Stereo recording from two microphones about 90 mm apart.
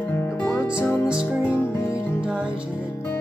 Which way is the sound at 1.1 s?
10° right (ahead or behind).